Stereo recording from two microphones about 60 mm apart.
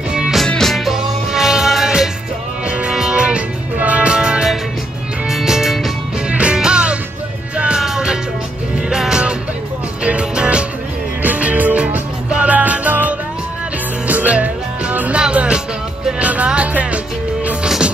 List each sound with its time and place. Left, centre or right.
0.5 s music: centre
0.7 s music: centre
10.0 s music: centre